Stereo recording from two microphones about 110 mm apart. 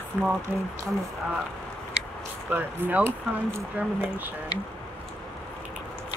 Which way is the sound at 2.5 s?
20° right (ahead or behind).